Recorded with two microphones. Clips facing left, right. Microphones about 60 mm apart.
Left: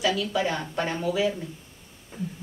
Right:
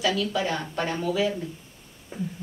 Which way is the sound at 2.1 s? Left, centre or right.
Centre.